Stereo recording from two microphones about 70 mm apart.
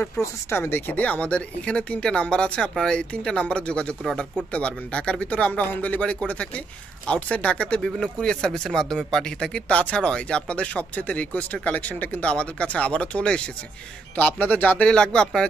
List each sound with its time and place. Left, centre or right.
0.2 s speech: left; by 4.3 s centre
4.5 s speech: centre
14.1 s speech: left